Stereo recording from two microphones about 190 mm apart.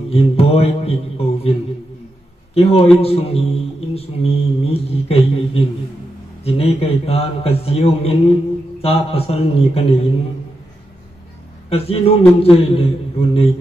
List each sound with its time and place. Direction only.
0.1 s a man's voice: 30° left (ahead or behind)
2.5 s speech: 30° left (ahead or behind)
11.7 s speech: 30° left (ahead or behind)